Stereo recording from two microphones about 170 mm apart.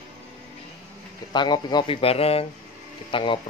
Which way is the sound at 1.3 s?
25° left (ahead or behind).